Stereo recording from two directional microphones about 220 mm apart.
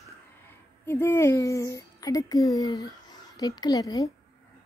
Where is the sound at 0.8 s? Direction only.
10° left (ahead or behind).